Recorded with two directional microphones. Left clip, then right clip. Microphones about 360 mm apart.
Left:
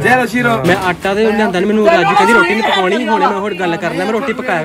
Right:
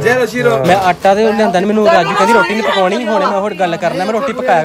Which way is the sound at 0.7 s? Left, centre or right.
Centre.